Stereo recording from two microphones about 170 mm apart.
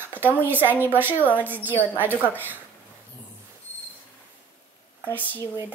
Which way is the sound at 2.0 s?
10° left (ahead or behind).